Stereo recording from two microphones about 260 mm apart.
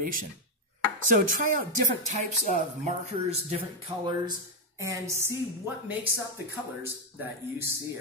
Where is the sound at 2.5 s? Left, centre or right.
Right; by 7.7 s centre.